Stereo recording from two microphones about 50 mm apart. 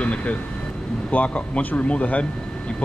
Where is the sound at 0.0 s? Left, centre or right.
Left.